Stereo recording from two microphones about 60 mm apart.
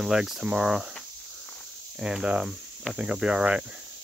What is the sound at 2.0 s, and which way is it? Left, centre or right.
Speech, centre.